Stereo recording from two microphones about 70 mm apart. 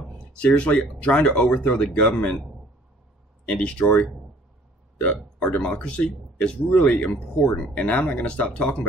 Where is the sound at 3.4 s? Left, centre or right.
Centre.